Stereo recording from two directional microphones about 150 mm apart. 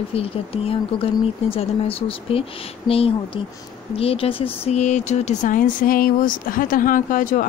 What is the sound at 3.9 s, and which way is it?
Speech, 40° left (ahead or behind).